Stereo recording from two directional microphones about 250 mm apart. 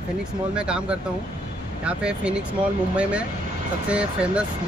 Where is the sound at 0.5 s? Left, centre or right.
Centre.